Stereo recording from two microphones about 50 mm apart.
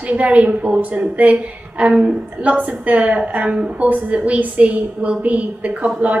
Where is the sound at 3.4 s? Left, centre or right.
Centre.